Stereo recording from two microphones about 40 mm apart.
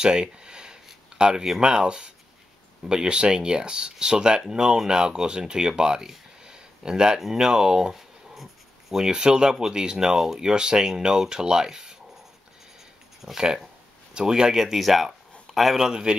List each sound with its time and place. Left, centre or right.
0.0 s speech: right
7.9 s writing: centre
9.0 s speech: right
13.2 s a man's voice: centre
15.8 s speech: centre